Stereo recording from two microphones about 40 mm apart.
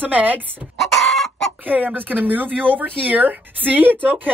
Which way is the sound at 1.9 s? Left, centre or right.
Right.